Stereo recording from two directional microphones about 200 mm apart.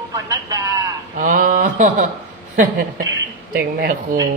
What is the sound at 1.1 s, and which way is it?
Speech, 40° right (ahead or behind).